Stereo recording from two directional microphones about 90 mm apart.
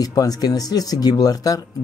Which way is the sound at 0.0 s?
45° left (ahead or behind).